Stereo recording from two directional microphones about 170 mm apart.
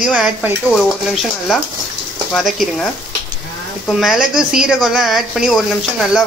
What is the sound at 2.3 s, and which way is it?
Speech, centre (ahead or behind).